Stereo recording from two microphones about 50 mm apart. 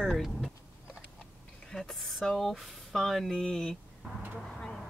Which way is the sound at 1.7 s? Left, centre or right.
Centre.